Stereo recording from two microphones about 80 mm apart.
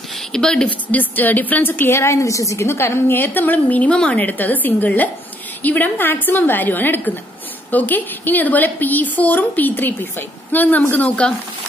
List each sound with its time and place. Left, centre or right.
0.3 s speech: centre
0.7 s a woman's voice: left